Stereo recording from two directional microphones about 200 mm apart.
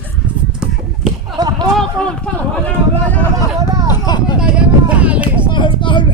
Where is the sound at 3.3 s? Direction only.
15° right (ahead or behind).